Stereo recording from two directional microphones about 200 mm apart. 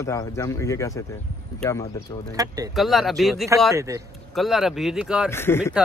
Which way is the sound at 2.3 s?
15° right (ahead or behind).